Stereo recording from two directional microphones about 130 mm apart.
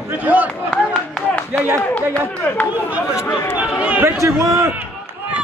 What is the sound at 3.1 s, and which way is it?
Speech, 20° left (ahead or behind).